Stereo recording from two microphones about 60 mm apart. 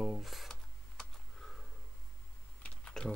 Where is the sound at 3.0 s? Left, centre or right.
Centre.